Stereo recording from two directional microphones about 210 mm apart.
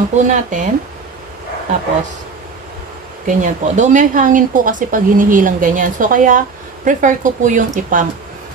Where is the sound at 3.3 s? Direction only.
35° right (ahead or behind).